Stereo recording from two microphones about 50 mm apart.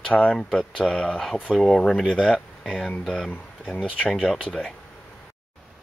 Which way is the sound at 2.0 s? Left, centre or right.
Centre.